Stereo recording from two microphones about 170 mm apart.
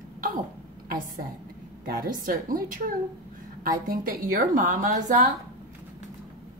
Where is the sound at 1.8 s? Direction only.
60° right (ahead or behind).